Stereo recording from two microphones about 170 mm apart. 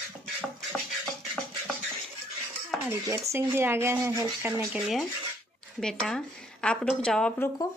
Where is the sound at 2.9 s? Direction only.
15° right (ahead or behind).